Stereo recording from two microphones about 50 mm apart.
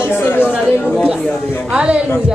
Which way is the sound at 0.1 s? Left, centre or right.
Left.